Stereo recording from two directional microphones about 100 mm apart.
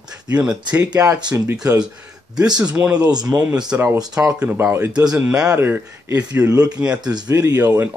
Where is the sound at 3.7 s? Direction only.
25° right (ahead or behind).